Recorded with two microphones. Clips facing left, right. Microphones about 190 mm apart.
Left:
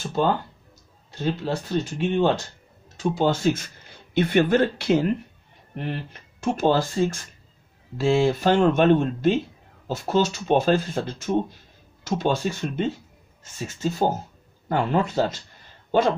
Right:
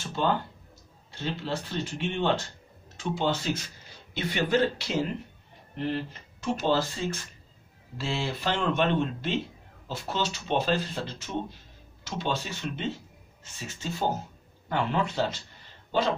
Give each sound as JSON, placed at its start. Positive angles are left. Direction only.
{"t": 1.1, "sound": "speech", "side_deg": 45}
{"t": 6.4, "sound": "speech", "side_deg": 50}